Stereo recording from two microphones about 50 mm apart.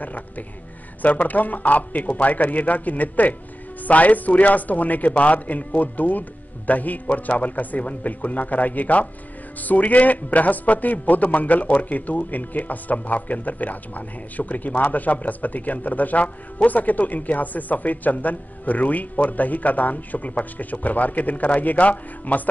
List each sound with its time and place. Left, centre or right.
0.0 s a man's voice: left